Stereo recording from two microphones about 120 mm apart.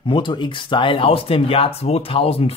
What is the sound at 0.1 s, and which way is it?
Speech, 40° left (ahead or behind).